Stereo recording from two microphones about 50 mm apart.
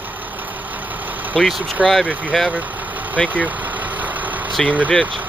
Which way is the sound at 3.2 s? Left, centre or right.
Right.